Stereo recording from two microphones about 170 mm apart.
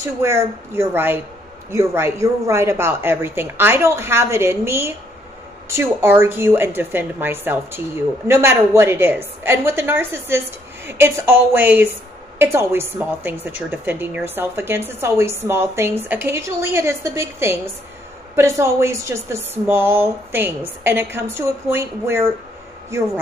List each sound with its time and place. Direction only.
0.0 s a woman's voice: 15° right (ahead or behind)